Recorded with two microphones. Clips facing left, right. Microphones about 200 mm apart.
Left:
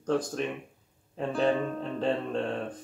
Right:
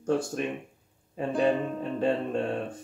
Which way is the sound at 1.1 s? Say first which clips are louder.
Right 1 dB; 10° right (ahead or behind).